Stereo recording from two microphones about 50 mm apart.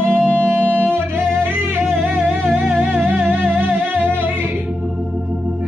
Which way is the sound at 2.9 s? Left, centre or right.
Centre.